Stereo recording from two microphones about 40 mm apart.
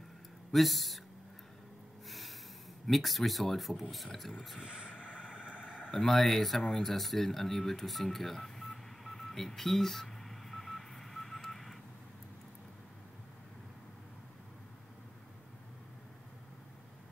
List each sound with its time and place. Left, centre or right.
0.5 s speech: centre
2.0 s snort: centre
2.9 s speech: centre
4.6 s vehicle: right
5.9 s speech: centre
6.7 s a sound: centre